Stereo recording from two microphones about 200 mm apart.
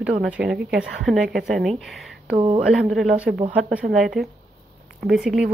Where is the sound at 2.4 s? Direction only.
30° right (ahead or behind).